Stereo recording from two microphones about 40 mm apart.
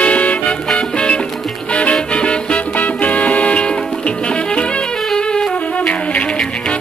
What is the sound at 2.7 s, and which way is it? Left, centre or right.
Music, left.